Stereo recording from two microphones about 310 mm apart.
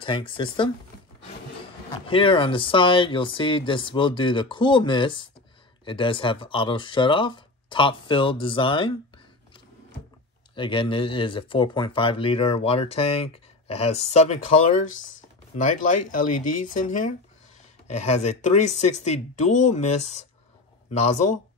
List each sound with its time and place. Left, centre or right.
0.0 s speech: centre
1.9 s speech: centre
10.5 s speech: centre